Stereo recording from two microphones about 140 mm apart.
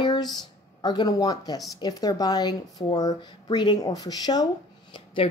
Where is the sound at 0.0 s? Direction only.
30° left (ahead or behind).